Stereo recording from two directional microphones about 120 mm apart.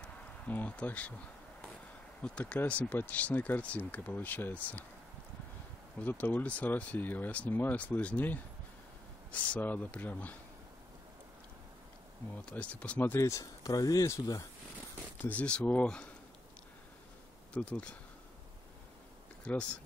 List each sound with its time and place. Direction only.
0.0 s a sound: 10° left (ahead or behind)
2.2 s speech: 10° left (ahead or behind)
5.9 s speech: 15° left (ahead or behind)
12.4 s speech: 10° left (ahead or behind); by 14.4 s 25° left (ahead or behind)
15.2 s speech: 10° left (ahead or behind)
17.6 s speech: 10° left (ahead or behind)
19.4 s speech: 10° left (ahead or behind)